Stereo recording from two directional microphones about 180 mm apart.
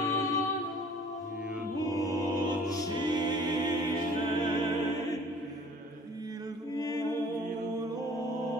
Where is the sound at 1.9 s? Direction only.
20° left (ahead or behind).